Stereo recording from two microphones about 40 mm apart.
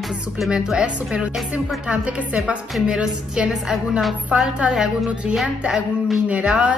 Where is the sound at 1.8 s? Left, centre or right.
Right.